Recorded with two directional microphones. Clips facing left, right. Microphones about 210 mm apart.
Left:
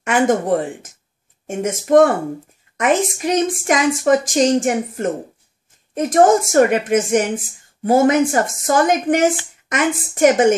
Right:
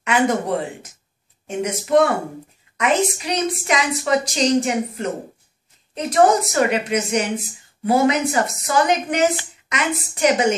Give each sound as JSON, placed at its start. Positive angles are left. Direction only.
{"t": 0.0, "sound": "speech", "side_deg": 50}
{"t": 1.9, "sound": "a woman's voice", "side_deg": 50}